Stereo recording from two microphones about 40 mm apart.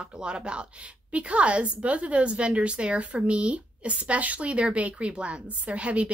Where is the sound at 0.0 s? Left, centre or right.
Right.